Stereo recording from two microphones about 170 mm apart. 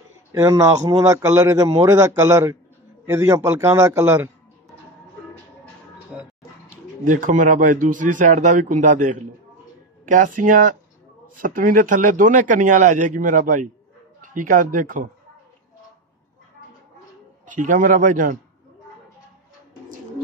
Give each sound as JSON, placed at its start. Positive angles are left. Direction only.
{"t": 0.3, "sound": "speech", "side_deg": -20}
{"t": 6.1, "sound": "a sound", "side_deg": 0}
{"t": 7.1, "sound": "speech", "side_deg": -50}
{"t": 17.5, "sound": "speech", "side_deg": -50}